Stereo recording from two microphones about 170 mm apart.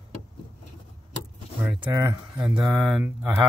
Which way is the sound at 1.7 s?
25° right (ahead or behind).